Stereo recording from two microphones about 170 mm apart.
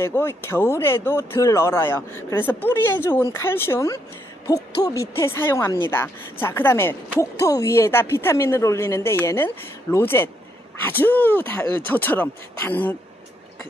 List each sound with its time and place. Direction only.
0.0 s speech: 15° left (ahead or behind)